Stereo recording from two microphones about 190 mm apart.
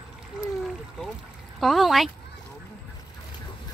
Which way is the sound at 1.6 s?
Centre (ahead or behind).